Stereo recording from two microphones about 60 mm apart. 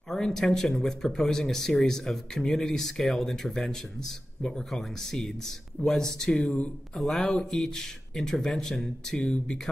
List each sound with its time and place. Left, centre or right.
0.1 s speech: centre
6.3 s speech: centre
7.0 s speech: centre